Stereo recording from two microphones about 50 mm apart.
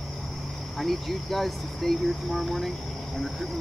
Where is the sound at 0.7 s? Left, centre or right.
Centre.